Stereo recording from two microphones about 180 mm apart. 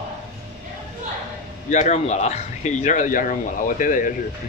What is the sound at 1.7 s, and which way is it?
Speech, 40° left (ahead or behind).